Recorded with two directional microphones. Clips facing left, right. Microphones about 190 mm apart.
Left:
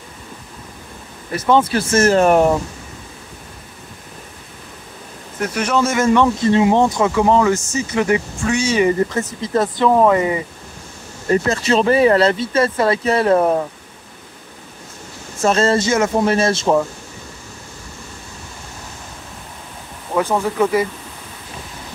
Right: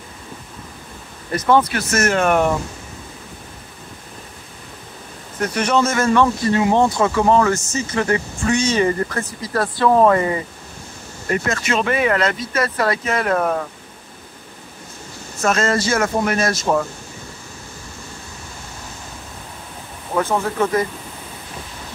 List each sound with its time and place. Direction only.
1.5 s speech: 30° left (ahead or behind)
5.4 s speech: 5° left (ahead or behind)
5.9 s speech: 15° left (ahead or behind)
11.2 s speech: 30° left (ahead or behind)
15.4 s speech: 30° left (ahead or behind)
20.2 s speech: 15° left (ahead or behind)